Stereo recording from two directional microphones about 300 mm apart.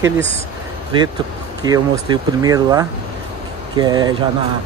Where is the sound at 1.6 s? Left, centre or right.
Centre.